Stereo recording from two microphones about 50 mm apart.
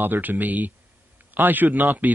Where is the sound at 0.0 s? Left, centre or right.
Right.